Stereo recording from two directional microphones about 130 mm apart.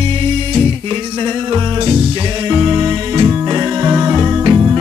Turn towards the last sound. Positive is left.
turn(degrees=-35)  # may be behind; listen again after turning